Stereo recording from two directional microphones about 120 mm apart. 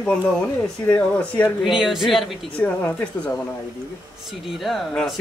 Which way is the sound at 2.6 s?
15° left (ahead or behind).